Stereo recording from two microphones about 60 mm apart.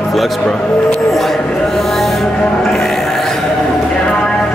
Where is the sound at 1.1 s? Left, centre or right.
Centre.